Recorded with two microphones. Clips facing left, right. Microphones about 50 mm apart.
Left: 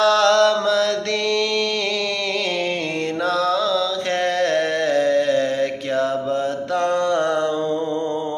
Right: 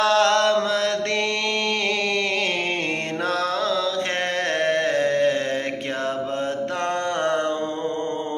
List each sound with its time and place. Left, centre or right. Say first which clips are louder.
0.0 s chant: left 3 dB; right
4.4 s music: left 2 dB; right
7.1 s a sound: left 3 dB; right